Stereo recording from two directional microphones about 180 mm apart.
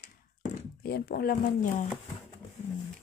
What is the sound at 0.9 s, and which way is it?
Speech, 60° left (ahead or behind).